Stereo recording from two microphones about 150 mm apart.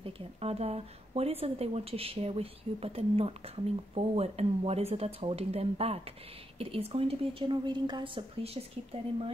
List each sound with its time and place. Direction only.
0.0 s a woman's voice: 40° right (ahead or behind)